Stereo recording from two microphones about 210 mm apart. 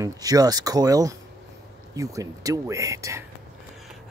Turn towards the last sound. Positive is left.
turn(degrees=-15)  # may be behind; listen again after turning